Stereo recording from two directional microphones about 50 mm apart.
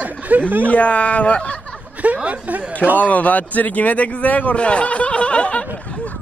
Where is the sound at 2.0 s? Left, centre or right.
Right.